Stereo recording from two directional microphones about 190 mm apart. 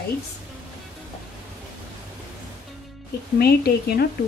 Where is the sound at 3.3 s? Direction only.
55° left (ahead or behind).